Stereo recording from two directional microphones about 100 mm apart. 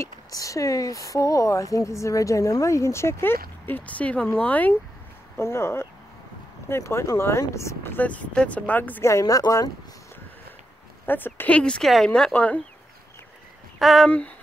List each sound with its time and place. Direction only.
0.0 s speech: 35° left (ahead or behind); by 4.7 s 15° left (ahead or behind)
5.4 s speech: 25° left (ahead or behind)
9.0 s speech: 35° left (ahead or behind)
11.1 s speech: 20° left (ahead or behind)
13.7 s speech: centre (ahead or behind)